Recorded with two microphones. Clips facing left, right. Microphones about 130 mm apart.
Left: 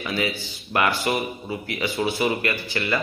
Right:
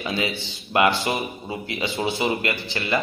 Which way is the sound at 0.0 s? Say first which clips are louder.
Even; 25° right (ahead or behind).